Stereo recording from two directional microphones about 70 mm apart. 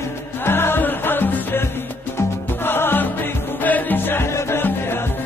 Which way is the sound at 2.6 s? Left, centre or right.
Left.